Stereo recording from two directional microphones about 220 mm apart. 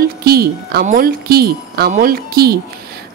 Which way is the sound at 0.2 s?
45° right (ahead or behind).